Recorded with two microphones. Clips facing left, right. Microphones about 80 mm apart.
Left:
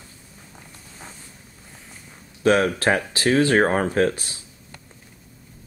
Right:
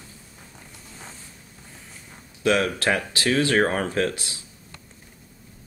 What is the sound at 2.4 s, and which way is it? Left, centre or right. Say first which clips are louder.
Speech: left 3 dB; left.